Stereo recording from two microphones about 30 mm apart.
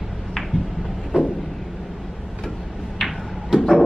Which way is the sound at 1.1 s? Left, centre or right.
Right.